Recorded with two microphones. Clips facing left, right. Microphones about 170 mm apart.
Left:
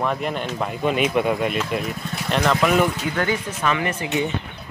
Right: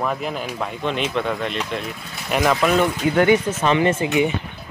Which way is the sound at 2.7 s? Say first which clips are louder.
Right 1 dB; 5° left (ahead or behind).